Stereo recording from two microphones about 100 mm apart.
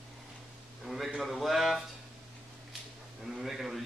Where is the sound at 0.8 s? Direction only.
Centre (ahead or behind).